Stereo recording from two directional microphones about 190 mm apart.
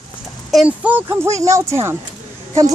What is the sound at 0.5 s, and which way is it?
A child's voice, 5° right (ahead or behind).